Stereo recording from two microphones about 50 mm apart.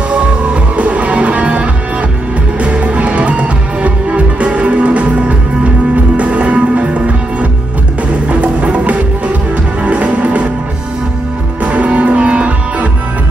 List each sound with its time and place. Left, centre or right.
0.7 s music: right
8.3 s music: right
11.6 s music: right